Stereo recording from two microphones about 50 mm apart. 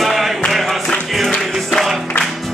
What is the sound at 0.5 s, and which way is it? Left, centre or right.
Music, centre.